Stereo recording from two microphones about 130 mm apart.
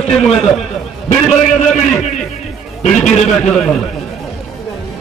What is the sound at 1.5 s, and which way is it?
Speech, 65° left (ahead or behind).